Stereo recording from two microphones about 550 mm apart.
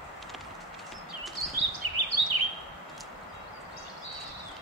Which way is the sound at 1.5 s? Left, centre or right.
Right.